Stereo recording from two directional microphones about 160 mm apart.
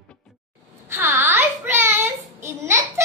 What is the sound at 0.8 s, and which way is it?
Child singing, 15° right (ahead or behind).